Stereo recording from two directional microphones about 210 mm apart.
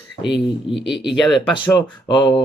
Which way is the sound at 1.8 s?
20° left (ahead or behind).